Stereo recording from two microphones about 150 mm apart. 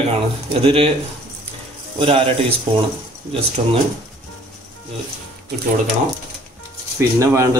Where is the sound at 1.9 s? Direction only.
40° right (ahead or behind).